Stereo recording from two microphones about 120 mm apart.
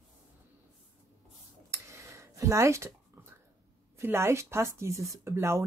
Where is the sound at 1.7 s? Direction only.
25° right (ahead or behind).